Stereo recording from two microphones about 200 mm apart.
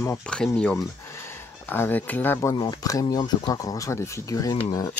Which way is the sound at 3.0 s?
20° left (ahead or behind).